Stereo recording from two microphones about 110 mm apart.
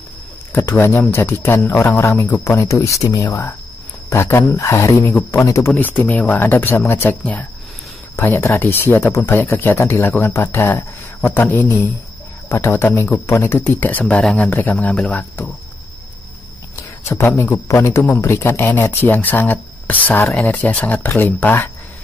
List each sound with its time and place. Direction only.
0.5 s speech: 20° left (ahead or behind)
5.8 s speech: 15° left (ahead or behind)
16.7 s speech: 20° left (ahead or behind)